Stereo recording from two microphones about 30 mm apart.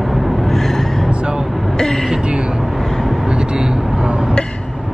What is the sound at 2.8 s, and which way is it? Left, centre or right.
Vehicle, centre.